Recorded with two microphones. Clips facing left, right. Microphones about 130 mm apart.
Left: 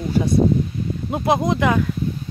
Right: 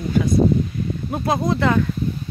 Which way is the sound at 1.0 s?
20° left (ahead or behind).